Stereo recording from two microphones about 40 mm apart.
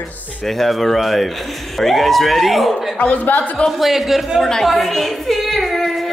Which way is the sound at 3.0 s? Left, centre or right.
Left.